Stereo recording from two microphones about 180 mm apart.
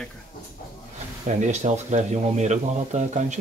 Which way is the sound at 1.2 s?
40° right (ahead or behind).